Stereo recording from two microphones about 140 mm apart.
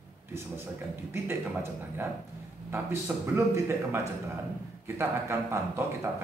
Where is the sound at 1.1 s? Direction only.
15° right (ahead or behind).